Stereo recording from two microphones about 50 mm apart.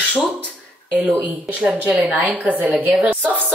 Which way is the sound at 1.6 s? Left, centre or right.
Right.